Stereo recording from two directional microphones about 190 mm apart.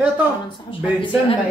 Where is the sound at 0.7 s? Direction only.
30° left (ahead or behind).